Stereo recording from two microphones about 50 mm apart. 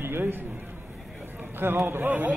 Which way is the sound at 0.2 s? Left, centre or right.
Right.